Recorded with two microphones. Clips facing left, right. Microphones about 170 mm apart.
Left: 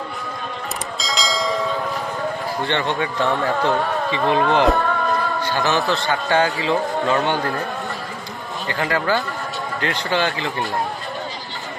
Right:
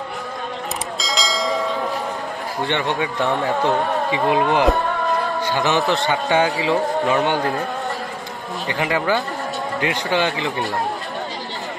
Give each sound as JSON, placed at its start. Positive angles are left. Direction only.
{"t": 0.9, "sound": "bell", "side_deg": 0}
{"t": 2.6, "sound": "a man's voice", "side_deg": -15}
{"t": 8.6, "sound": "speech", "side_deg": -15}